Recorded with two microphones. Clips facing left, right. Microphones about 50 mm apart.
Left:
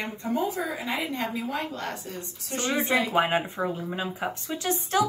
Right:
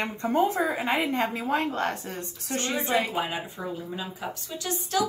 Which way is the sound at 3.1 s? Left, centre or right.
Left.